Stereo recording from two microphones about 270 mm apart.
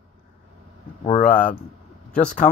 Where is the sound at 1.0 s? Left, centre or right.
Left.